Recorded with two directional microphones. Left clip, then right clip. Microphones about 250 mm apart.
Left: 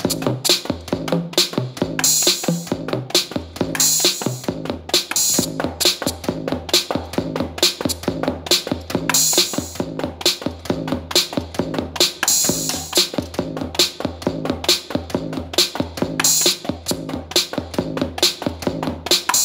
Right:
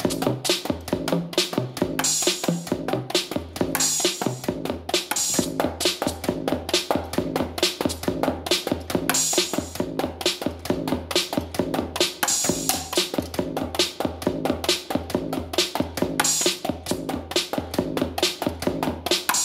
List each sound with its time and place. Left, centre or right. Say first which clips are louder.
0.0 s music: left 3 dB; left